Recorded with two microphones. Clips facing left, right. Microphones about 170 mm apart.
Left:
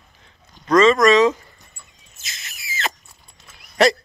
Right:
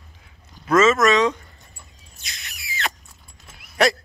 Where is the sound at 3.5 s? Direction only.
Centre (ahead or behind).